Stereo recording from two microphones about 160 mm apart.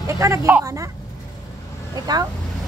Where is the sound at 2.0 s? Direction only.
25° right (ahead or behind).